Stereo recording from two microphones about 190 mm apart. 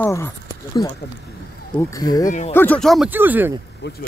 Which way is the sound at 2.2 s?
40° left (ahead or behind).